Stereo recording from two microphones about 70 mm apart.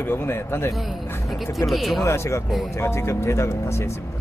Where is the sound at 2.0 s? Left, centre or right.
Left.